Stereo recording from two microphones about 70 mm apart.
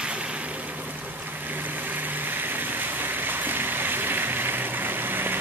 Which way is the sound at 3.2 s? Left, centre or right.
Right.